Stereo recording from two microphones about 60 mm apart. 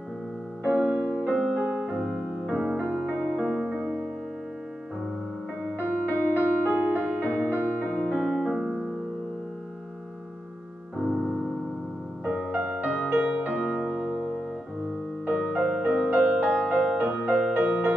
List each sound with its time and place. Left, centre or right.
0.7 s music: centre
2.0 s music: centre
3.3 s music: centre
3.6 s music: centre
5.8 s music: right
8.0 s music: centre
8.3 s piano: centre
12.3 s music: right
15.2 s music: right